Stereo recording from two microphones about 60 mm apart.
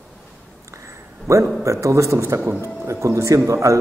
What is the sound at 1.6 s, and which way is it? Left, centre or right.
A man's voice, right.